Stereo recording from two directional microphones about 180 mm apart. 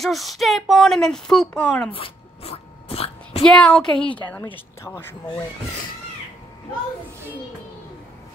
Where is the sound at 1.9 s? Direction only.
30° left (ahead or behind).